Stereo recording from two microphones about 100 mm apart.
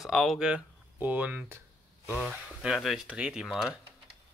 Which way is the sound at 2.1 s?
5° right (ahead or behind).